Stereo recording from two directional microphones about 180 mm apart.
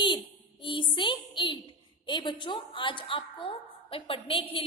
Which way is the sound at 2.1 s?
25° left (ahead or behind).